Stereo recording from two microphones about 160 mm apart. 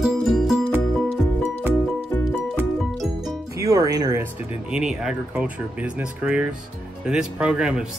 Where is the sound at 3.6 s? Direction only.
20° right (ahead or behind).